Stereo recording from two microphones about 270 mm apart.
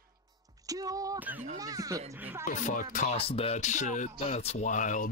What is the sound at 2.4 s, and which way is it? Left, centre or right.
A woman's voice, left.